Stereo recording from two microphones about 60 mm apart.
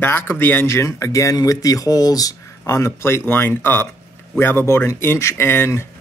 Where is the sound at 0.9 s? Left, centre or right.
Left.